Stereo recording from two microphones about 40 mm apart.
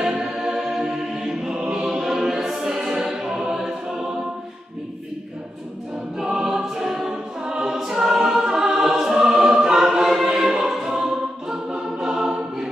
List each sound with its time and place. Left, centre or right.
0.0 s choir: centre
6.2 s choir: centre
11.0 s music: centre